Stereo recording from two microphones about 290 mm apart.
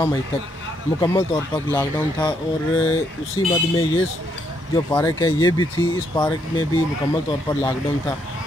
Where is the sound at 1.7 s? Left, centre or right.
Centre.